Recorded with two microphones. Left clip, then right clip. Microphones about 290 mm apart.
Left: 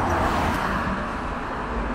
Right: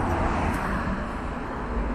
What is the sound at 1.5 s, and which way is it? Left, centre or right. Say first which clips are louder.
Vehicle: left 4 dB; left.